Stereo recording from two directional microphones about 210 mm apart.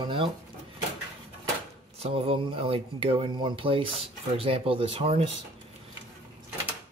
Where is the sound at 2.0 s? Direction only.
25° right (ahead or behind).